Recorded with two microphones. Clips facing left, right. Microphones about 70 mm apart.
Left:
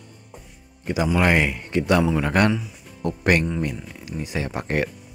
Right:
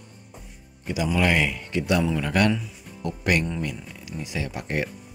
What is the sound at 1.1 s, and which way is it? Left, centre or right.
Speech, left.